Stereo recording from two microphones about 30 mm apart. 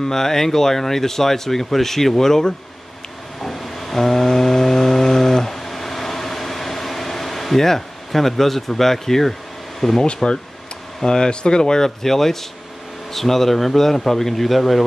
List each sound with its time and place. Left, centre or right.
0.0 s speech: centre
3.4 s vehicle: centre
9.8 s speech: centre
10.1 s speech: left
12.0 s speech: centre